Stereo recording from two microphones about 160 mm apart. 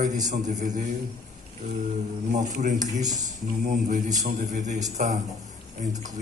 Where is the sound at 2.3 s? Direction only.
50° right (ahead or behind).